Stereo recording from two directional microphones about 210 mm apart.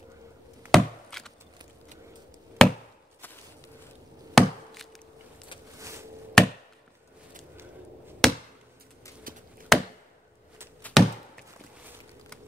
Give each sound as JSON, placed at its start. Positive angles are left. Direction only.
{"t": 0.7, "sound": "wood", "side_deg": 0}
{"t": 2.6, "sound": "chop", "side_deg": 0}
{"t": 4.4, "sound": "chop", "side_deg": 0}
{"t": 5.8, "sound": "a sound", "side_deg": -15}
{"t": 6.4, "sound": "chop", "side_deg": 0}
{"t": 8.2, "sound": "chop", "side_deg": 0}
{"t": 9.3, "sound": "chop", "side_deg": -40}
{"t": 9.7, "sound": "chop", "side_deg": 0}